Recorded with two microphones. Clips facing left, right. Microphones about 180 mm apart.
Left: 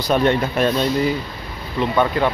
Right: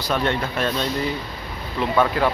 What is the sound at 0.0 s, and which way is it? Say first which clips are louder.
Speech: left 6 dB; 20° left (ahead or behind).